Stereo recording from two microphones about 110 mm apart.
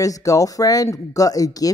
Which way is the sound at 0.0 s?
30° left (ahead or behind).